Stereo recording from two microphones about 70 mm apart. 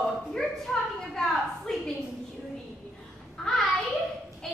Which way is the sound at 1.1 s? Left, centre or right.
Centre.